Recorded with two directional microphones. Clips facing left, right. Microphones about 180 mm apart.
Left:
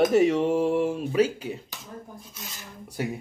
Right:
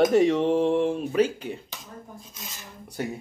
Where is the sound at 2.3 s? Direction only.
20° right (ahead or behind).